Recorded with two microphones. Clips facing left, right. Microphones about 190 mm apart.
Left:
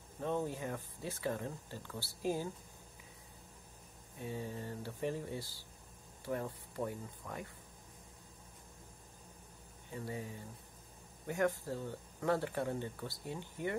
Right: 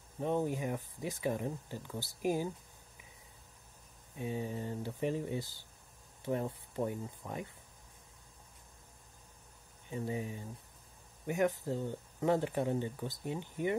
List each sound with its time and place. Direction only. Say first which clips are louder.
0.2 s speech: right 4 dB; 15° right (ahead or behind)
4.2 s speech: right 4 dB; 15° right (ahead or behind)
9.8 s speech: right 5 dB; 20° right (ahead or behind)